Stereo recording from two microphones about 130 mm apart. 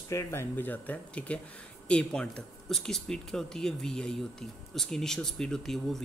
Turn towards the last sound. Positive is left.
turn(degrees=5)  # may be behind; listen again after turning